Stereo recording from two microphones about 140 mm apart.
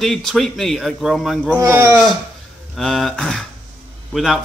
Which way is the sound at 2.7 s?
Centre (ahead or behind).